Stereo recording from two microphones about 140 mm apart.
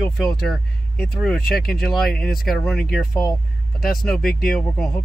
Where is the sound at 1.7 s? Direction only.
Centre (ahead or behind).